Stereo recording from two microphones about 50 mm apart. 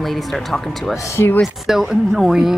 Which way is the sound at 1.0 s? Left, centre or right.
Left.